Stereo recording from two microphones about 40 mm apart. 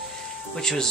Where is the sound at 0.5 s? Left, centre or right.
Centre.